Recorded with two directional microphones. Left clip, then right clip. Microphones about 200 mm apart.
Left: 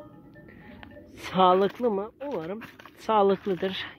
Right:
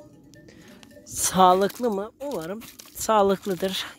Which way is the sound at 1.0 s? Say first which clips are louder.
Right 4 dB; 30° right (ahead or behind).